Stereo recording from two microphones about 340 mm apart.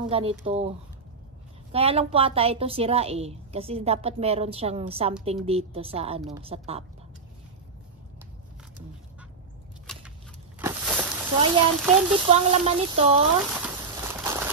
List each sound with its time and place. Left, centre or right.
0.0 s a woman's voice: centre
10.6 s speech: centre
14.0 s a sound: centre